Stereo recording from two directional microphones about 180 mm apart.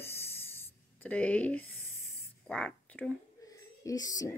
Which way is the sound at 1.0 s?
10° left (ahead or behind).